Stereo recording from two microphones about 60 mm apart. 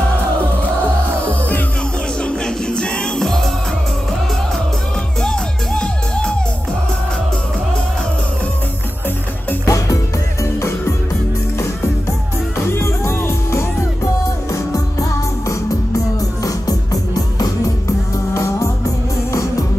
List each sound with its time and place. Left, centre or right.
2.2 s music: centre
5.2 s music: centre
9.7 s music: left
12.5 s music: left
14.5 s music: left
16.4 s music: left
17.8 s music: left